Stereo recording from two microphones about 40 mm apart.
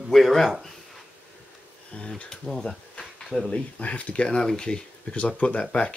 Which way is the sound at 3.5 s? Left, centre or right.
Left.